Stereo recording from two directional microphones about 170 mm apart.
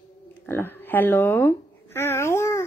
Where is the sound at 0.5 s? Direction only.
15° left (ahead or behind).